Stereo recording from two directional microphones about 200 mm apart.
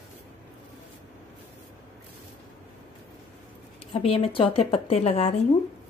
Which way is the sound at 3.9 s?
30° left (ahead or behind).